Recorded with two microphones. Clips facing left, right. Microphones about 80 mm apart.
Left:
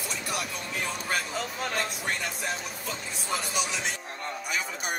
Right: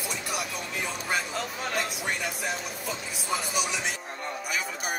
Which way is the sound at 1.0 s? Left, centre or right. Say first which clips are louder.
Right 2 dB; centre.